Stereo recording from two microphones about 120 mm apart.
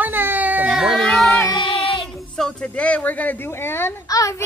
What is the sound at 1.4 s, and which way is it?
Child singing, 30° left (ahead or behind).